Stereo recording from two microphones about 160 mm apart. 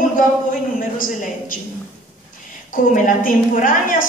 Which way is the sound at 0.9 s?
60° left (ahead or behind).